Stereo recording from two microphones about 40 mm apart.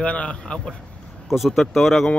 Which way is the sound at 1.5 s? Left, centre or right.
Centre.